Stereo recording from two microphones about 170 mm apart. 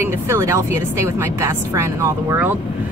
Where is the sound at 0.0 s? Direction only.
15° right (ahead or behind).